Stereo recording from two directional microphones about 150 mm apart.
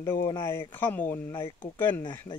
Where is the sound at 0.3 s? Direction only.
15° left (ahead or behind).